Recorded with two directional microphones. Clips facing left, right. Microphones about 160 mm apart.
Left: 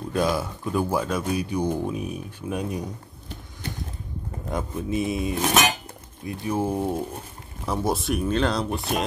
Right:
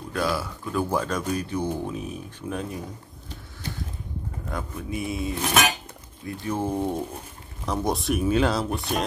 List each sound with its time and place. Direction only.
0.1 s speech: 20° left (ahead or behind)
4.5 s speech: 20° left (ahead or behind); by 9.0 s centre (ahead or behind)